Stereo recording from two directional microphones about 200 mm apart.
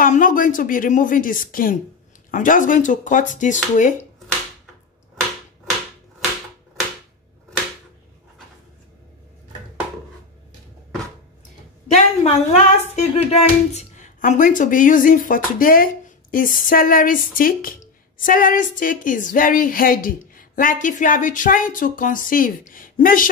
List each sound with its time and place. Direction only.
0.0 s speech: 45° left (ahead or behind)
11.9 s speech: 35° left (ahead or behind)